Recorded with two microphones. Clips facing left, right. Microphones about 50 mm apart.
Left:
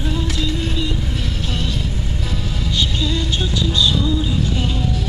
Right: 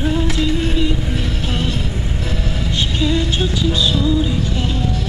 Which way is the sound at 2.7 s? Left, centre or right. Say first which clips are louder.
Right 3 dB; right.